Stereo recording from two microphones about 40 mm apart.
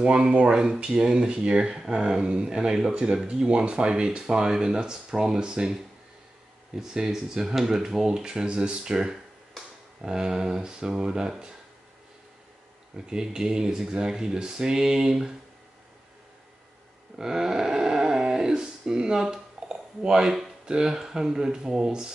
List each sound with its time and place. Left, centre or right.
0.0 s speech: right
12.9 s speech: centre
17.2 s a sound: centre
20.6 s speech: centre